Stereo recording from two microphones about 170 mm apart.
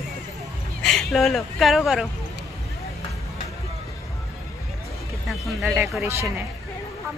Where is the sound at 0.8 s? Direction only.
Centre (ahead or behind).